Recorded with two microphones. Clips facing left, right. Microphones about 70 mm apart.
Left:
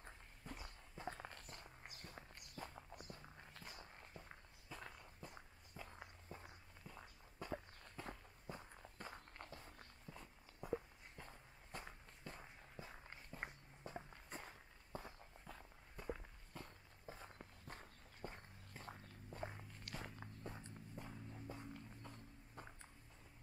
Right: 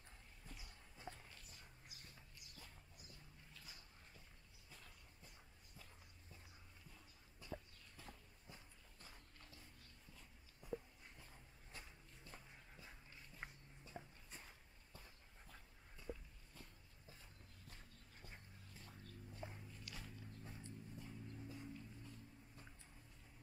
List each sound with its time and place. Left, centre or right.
0.0 s walk: left
1.1 s walk: left
3.2 s walk: left
9.7 s a sound: left
13.0 s walk: left
14.3 s walk: left
21.5 s music: left